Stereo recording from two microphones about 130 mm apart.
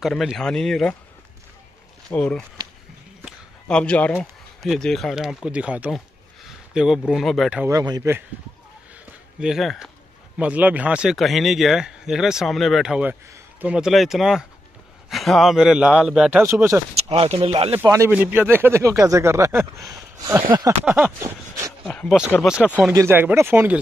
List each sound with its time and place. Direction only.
0.0 s speech: centre (ahead or behind)
2.0 s speech: 5° left (ahead or behind)
3.6 s speech: 5° left (ahead or behind)
7.6 s speech: 30° right (ahead or behind)
9.4 s speech: centre (ahead or behind); by 16.8 s 20° right (ahead or behind)
16.9 s speech: 50° right (ahead or behind)
17.8 s speech: 25° right (ahead or behind)
20.8 s a sound: 15° right (ahead or behind)
21.8 s speech: 5° left (ahead or behind)
22.4 s speech: 5° right (ahead or behind)
22.9 s speech: 15° right (ahead or behind)